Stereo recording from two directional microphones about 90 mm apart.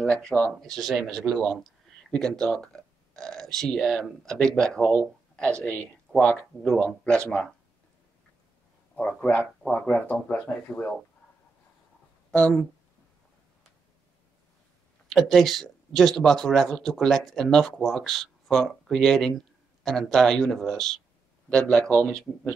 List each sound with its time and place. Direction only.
0.0 s speech: 10° left (ahead or behind)
8.9 s speech: 15° left (ahead or behind)
12.3 s speech: 15° left (ahead or behind)
15.0 s speech: centre (ahead or behind)